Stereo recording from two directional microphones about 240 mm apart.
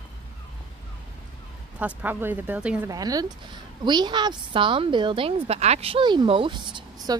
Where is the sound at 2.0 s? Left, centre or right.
Centre.